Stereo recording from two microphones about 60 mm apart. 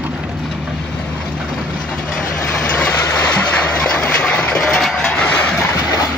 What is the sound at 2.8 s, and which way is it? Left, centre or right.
Train, left.